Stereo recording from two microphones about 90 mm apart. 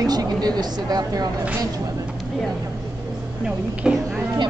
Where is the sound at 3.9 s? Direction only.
5° right (ahead or behind).